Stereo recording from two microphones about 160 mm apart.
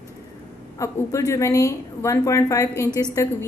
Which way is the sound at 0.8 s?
20° left (ahead or behind).